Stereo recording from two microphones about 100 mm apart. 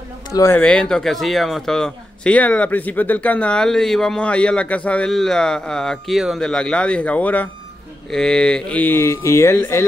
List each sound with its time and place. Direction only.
0.3 s speech: 30° left (ahead or behind)
0.6 s speech: 10° left (ahead or behind); by 9.8 s 25° left (ahead or behind)